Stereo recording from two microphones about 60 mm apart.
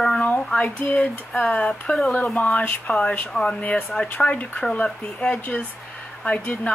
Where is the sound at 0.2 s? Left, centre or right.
Centre.